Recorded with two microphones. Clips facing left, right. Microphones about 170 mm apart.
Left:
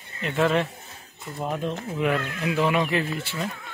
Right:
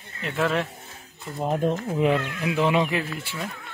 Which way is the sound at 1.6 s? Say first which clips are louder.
Right 6 dB; 40° right (ahead or behind).